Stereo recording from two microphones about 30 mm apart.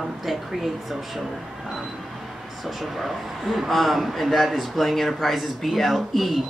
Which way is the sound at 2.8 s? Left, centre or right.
Centre.